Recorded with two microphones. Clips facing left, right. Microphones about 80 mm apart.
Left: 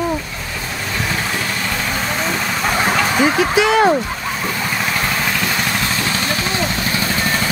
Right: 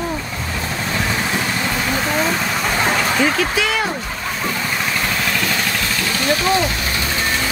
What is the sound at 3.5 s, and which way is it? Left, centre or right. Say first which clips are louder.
Speech: left 6 dB; left.